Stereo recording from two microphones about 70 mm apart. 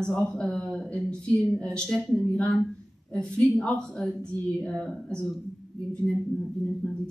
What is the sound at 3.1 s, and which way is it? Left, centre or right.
A woman's voice, centre.